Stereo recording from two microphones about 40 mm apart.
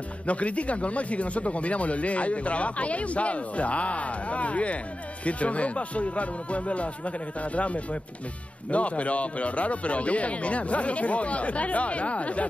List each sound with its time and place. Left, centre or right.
0.3 s speech: left